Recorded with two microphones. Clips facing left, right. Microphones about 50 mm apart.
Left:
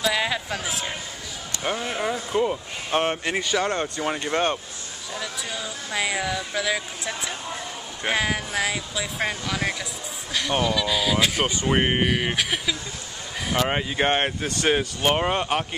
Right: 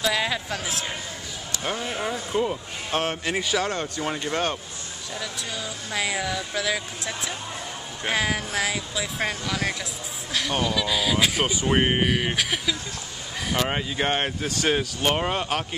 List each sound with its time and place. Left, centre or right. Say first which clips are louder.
0.0 s speech: left 1 dB; centre
3.0 s speech: left 3 dB; centre
3.3 s speech: even; centre
4.1 s speech: left 3 dB; centre